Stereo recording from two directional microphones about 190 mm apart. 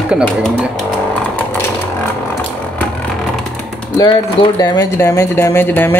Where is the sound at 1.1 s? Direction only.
10° left (ahead or behind).